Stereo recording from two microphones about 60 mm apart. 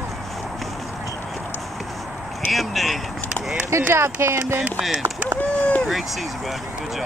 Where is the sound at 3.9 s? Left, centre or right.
Right.